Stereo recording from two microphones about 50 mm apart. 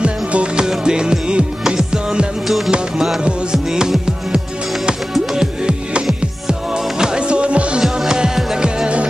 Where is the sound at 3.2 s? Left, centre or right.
Centre.